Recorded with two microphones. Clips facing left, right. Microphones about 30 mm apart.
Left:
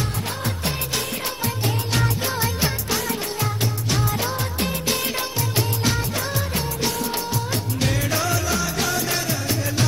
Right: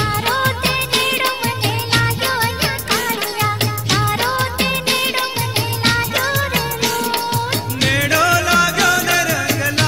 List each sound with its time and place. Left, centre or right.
0.3 s music: right
4.0 s music: right
5.9 s music: right